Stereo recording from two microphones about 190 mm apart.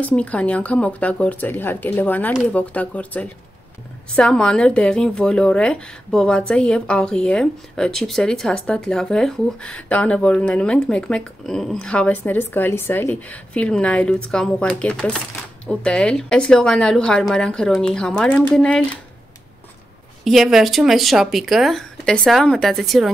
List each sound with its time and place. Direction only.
0.0 s speech: 5° left (ahead or behind)
20.2 s speech: centre (ahead or behind)